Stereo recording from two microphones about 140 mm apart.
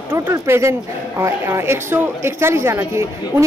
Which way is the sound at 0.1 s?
15° right (ahead or behind).